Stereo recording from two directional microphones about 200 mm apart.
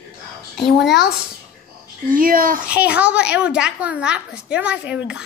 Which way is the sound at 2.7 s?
5° right (ahead or behind).